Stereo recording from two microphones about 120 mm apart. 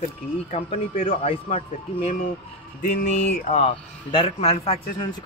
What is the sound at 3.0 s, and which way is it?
Speech, 85° left.